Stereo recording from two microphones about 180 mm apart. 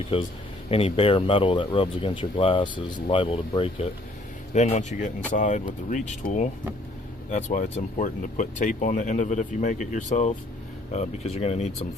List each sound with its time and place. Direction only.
0.1 s speech: 30° left (ahead or behind)
4.6 s speech: 40° left (ahead or behind)